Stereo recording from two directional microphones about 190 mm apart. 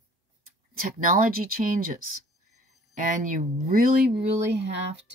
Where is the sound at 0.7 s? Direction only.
45° right (ahead or behind).